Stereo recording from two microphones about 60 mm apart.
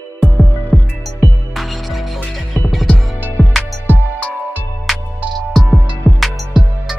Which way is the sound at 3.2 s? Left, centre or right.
Right.